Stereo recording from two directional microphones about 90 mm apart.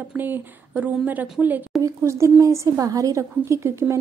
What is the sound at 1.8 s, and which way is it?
A woman's voice, 35° right (ahead or behind).